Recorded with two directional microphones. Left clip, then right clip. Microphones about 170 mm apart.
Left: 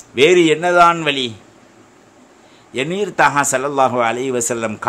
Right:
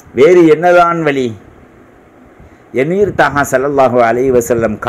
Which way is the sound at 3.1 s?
15° left (ahead or behind).